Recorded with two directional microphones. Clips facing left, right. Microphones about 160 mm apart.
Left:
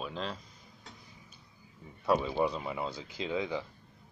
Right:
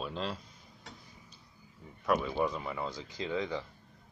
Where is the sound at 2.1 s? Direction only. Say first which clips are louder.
Left 2 dB; 20° left (ahead or behind).